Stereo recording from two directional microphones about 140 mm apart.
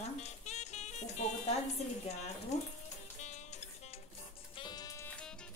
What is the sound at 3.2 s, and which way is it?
Music, 55° left (ahead or behind).